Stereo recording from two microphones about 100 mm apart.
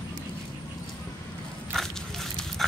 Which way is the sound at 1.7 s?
Centre (ahead or behind).